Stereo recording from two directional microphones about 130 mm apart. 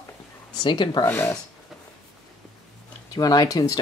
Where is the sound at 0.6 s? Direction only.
35° left (ahead or behind).